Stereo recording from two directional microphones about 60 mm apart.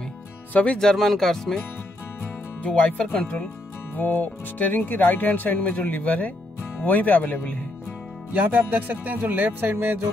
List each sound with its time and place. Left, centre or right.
0.5 s speech: left
0.7 s speech: centre
2.6 s speech: left
8.3 s speech: right